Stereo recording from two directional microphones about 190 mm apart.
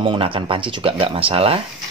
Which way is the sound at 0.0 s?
25° right (ahead or behind).